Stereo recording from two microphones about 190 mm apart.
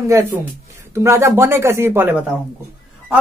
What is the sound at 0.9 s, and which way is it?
A man's voice, 15° right (ahead or behind).